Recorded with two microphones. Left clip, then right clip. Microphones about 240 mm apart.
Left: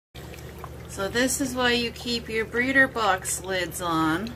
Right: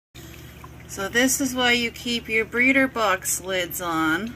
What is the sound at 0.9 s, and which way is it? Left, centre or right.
A woman's voice, right.